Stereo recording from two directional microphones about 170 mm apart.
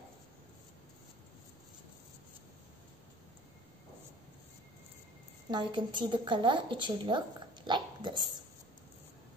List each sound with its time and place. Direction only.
5.5 s a woman's voice: 25° right (ahead or behind)